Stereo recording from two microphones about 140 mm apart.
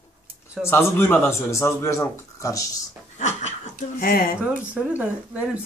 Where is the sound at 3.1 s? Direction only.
55° left (ahead or behind).